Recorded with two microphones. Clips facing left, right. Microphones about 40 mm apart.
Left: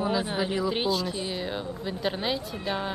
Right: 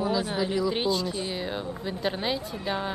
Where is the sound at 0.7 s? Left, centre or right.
Centre.